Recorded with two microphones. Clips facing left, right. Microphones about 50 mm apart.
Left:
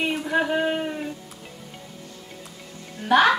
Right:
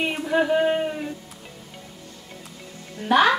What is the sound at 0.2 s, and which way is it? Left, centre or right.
Speech, centre.